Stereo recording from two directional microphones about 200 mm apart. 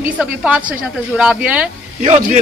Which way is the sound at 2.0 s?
35° right (ahead or behind).